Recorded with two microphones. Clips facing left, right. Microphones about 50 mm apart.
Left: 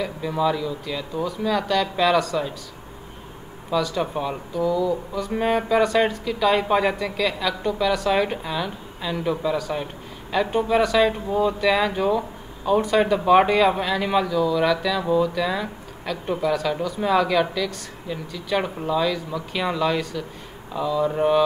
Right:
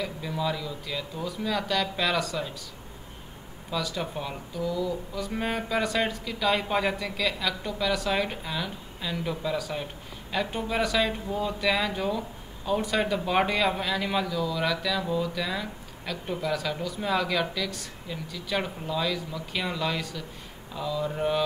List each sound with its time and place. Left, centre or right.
0.0 s speech: centre
3.7 s speech: centre